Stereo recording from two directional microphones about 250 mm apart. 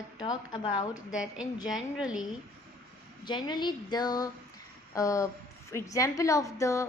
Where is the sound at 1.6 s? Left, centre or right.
Centre.